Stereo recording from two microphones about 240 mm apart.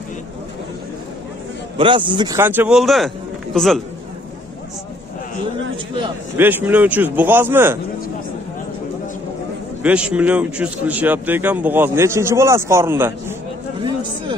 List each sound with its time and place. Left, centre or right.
1.8 s a man's voice: centre
5.9 s a man's voice: centre
6.4 s speech: centre
9.8 s speech: centre